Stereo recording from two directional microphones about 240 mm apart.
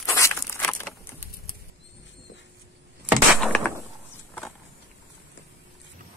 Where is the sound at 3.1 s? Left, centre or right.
Centre.